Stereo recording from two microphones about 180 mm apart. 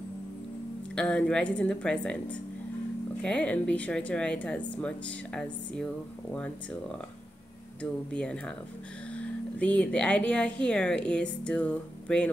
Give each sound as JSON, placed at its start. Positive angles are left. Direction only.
{"t": 0.9, "sound": "a woman's voice", "side_deg": 5}